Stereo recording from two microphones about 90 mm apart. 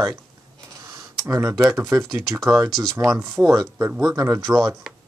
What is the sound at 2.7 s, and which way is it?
Speech, centre (ahead or behind).